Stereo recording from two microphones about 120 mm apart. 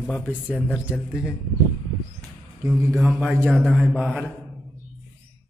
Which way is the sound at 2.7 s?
Centre (ahead or behind).